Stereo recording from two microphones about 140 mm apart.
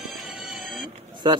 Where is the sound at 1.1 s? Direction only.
35° right (ahead or behind).